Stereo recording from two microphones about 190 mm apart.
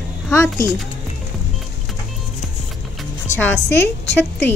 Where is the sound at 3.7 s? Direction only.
65° left (ahead or behind).